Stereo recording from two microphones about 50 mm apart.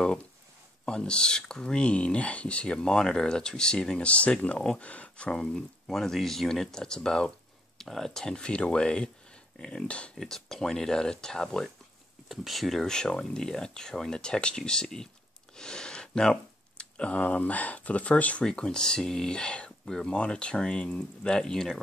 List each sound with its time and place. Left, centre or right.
0.8 s speech: centre
4.1 s speech: left
5.5 s speech: centre; by 10.1 s left
10.1 s speech: centre
12.3 s speech: centre
12.8 s speech: centre
18.4 s speech: centre